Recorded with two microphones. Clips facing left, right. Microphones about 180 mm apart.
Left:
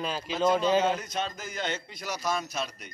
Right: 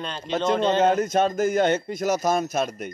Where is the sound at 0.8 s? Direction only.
45° right (ahead or behind).